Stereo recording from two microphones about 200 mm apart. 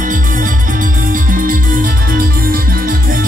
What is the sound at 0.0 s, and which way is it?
Music, 40° right (ahead or behind).